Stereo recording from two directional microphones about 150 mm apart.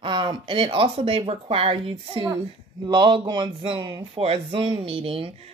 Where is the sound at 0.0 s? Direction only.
30° right (ahead or behind).